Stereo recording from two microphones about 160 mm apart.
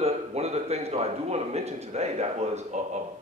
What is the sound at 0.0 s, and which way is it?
A man's voice, 40° right (ahead or behind).